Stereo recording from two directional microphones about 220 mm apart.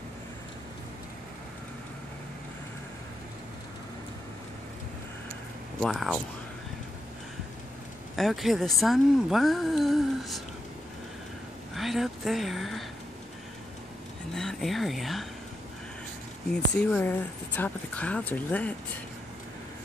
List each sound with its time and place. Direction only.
5.8 s speech: centre (ahead or behind)
8.2 s speech: centre (ahead or behind)
11.7 s speech: centre (ahead or behind)
14.3 s speech: centre (ahead or behind)
16.5 s speech: 5° left (ahead or behind)